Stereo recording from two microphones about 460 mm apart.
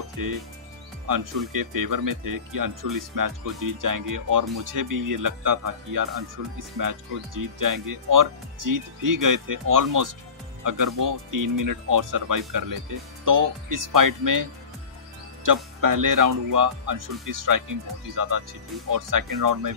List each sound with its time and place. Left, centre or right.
0.2 s speech: right